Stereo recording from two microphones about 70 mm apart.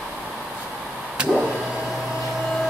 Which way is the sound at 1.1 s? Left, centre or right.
Centre.